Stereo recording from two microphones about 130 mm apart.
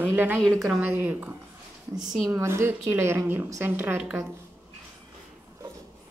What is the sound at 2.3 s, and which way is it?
Speech, 20° right (ahead or behind).